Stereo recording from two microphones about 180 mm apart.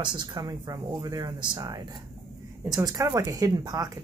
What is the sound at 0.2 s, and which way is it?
Speech, 20° right (ahead or behind).